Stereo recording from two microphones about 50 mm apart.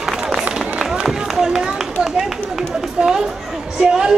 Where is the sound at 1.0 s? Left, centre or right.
Centre.